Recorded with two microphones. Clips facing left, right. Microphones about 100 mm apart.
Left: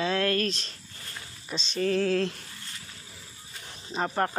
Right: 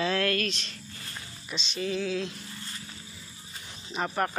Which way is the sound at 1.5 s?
40° left (ahead or behind).